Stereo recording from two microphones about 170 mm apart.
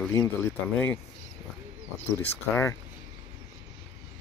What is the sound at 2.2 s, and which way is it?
Speech, 15° left (ahead or behind).